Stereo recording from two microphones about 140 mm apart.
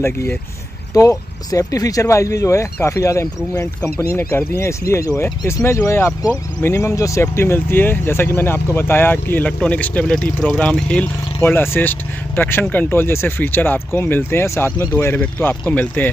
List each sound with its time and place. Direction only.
0.0 s speech: 15° left (ahead or behind)